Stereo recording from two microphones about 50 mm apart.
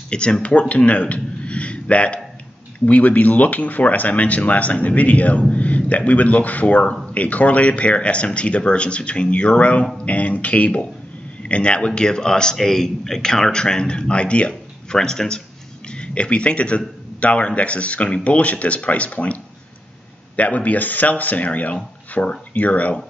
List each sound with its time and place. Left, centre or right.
0.1 s a man's voice: centre